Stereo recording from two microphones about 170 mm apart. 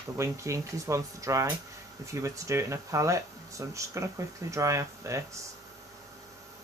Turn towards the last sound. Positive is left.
turn(degrees=-15)  # may be behind; listen again after turning